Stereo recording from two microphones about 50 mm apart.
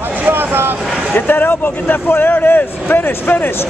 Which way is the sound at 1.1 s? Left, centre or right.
Left.